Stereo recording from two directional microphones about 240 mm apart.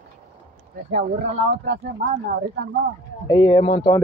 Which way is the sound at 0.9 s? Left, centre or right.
Right.